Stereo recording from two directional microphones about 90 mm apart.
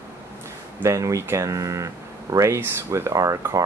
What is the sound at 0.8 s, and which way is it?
Speech, 35° right (ahead or behind).